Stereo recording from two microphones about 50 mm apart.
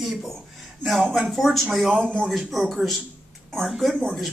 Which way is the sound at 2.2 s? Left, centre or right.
Centre.